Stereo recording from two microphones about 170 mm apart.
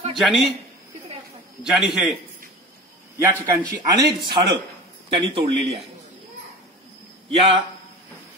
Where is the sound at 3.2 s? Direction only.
15° right (ahead or behind).